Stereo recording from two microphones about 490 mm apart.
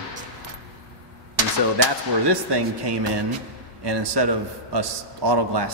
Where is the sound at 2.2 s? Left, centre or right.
Right.